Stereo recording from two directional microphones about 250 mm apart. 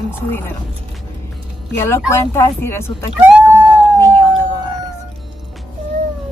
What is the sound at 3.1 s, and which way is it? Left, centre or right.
Speech, centre.